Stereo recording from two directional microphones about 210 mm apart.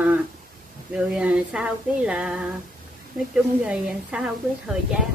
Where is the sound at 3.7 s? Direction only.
5° right (ahead or behind).